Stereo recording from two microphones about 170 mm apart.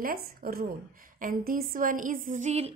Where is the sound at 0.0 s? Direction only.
60° right (ahead or behind).